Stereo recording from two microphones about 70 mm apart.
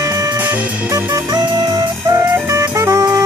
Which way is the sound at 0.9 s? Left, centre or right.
Right.